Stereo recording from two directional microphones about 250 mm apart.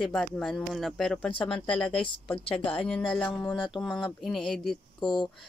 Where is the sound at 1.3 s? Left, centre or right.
Centre.